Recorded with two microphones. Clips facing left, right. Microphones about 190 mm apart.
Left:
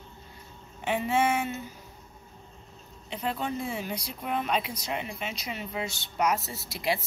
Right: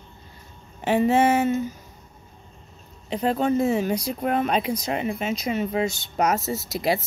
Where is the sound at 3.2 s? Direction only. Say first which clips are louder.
Right 10 dB; 45° right (ahead or behind).